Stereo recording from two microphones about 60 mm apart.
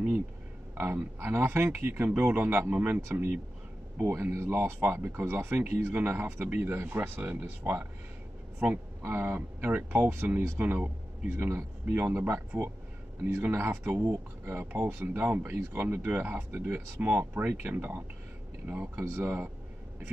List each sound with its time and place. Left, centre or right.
0.7 s speech: right
3.1 s speech: right